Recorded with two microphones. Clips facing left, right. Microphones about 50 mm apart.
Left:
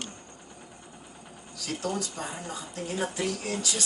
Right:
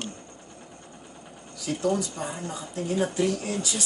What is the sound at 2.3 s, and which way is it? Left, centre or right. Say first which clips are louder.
Speech: right 3 dB; centre.